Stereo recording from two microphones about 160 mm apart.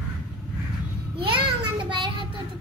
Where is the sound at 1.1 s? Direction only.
30° right (ahead or behind).